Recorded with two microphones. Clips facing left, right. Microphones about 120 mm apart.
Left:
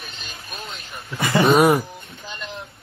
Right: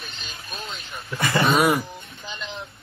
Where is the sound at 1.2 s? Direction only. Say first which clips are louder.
Left 4 dB; 15° left (ahead or behind).